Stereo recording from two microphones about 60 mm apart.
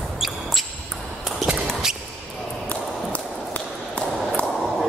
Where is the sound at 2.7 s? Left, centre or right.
Left.